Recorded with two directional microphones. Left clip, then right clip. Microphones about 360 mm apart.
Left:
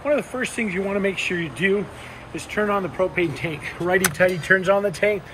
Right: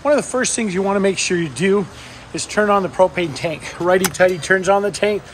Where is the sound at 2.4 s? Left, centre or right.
Centre.